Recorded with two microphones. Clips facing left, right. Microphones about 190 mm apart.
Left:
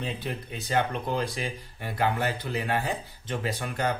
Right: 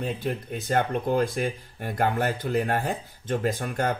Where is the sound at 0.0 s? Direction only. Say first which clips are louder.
Right 4 dB; 50° right (ahead or behind).